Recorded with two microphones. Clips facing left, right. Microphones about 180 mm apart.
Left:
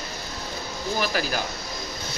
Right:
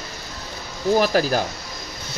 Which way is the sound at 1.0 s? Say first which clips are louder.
Right 7 dB; 40° right (ahead or behind).